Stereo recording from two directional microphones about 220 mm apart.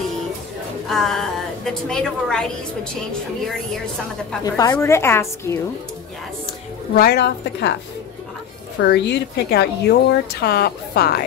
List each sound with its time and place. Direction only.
0.8 s a woman's voice: centre (ahead or behind)
4.6 s a woman's voice: 15° left (ahead or behind)
7.0 s a woman's voice: 45° left (ahead or behind)
8.8 s a woman's voice: 50° left (ahead or behind)